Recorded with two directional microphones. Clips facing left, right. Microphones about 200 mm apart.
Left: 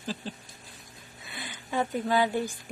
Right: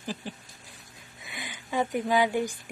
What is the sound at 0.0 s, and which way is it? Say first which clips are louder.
Patter: even; 15° right (ahead or behind).